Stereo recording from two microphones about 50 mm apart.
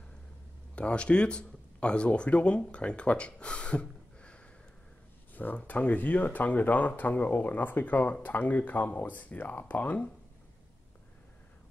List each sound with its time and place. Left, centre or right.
0.7 s speech: left
5.3 s a sound: left
5.7 s speech: left